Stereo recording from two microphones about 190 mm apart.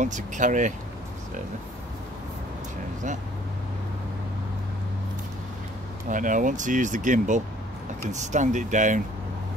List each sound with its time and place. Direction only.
0.0 s speech: 40° right (ahead or behind)
6.0 s speech: 45° right (ahead or behind)